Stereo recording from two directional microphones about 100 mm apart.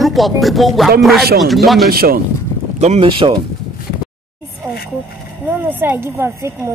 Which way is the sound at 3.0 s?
55° right (ahead or behind).